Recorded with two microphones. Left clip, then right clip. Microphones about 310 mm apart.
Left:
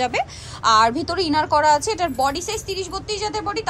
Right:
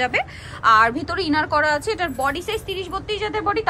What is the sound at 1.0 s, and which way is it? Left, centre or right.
Speech, centre.